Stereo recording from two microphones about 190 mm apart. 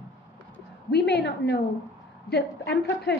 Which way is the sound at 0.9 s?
60° left (ahead or behind).